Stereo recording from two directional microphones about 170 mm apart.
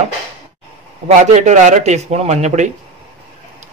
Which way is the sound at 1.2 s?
45° right (ahead or behind).